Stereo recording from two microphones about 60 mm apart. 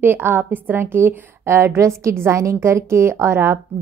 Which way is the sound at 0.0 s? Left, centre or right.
Right.